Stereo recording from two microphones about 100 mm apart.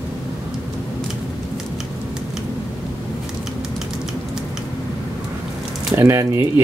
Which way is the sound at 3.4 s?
5° right (ahead or behind).